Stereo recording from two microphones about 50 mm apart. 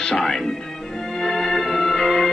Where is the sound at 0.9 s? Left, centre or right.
Centre.